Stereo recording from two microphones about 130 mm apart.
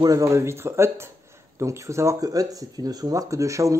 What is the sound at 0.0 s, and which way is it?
Speech, 25° right (ahead or behind).